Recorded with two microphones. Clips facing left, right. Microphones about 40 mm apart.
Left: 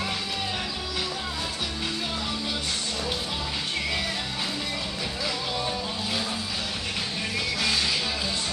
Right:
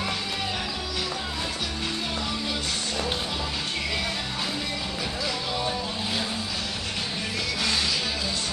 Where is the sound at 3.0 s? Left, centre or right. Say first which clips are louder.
Right 2 dB; right.